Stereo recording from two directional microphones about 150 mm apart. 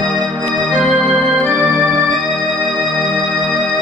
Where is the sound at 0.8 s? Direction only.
Centre (ahead or behind).